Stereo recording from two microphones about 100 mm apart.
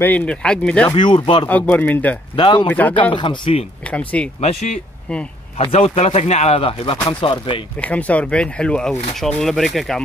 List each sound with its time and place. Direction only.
0.0 s speech: 15° left (ahead or behind)
0.8 s speech: 50° left (ahead or behind)
1.5 s speech: 15° left (ahead or behind)
2.3 s speech: 55° left (ahead or behind)
2.7 s speech: 15° left (ahead or behind)
3.2 s speech: 55° left (ahead or behind)
3.9 s speech: 15° left (ahead or behind)
5.6 s speech: 85° left; by 7.6 s 60° left (ahead or behind)
7.8 s speech: 15° left (ahead or behind)